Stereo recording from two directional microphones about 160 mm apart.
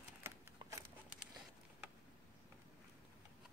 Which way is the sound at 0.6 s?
20° right (ahead or behind).